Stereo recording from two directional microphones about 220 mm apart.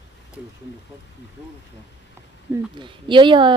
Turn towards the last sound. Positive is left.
turn(degrees=-20)  # may be behind; listen again after turning